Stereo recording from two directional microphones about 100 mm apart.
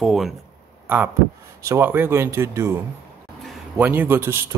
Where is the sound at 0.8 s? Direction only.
20° right (ahead or behind).